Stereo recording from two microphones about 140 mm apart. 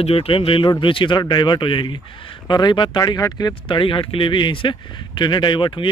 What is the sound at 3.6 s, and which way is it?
Speech, 35° left (ahead or behind).